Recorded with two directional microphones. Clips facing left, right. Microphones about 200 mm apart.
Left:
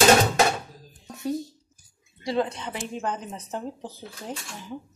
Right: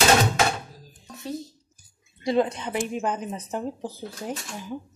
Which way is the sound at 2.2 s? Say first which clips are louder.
Right 3 dB; 15° right (ahead or behind).